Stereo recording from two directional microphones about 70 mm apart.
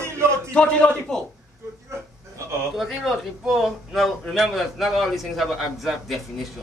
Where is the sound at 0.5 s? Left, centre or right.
Centre.